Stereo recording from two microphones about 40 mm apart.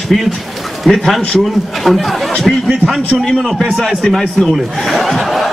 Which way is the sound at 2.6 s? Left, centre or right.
Right.